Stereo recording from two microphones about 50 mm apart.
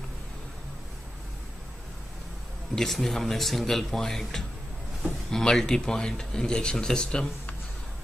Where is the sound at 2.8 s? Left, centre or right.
Centre.